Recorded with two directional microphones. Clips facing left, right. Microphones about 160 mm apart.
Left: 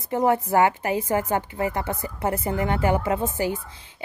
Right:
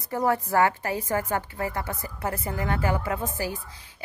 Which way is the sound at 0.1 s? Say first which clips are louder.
Left 4 dB; 20° left (ahead or behind).